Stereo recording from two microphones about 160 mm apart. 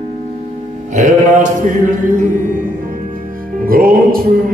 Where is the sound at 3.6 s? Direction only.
65° right (ahead or behind).